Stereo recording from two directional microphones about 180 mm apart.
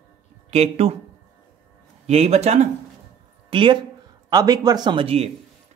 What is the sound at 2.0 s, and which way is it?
A woman's voice, 35° right (ahead or behind).